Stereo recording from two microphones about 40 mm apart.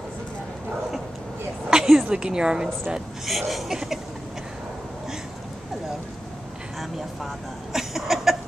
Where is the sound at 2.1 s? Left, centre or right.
Right.